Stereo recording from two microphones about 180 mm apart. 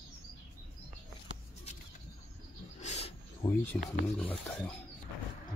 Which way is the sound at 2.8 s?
40° left (ahead or behind).